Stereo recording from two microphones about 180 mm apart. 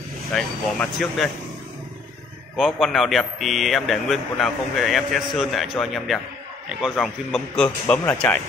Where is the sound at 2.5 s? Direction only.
Centre (ahead or behind).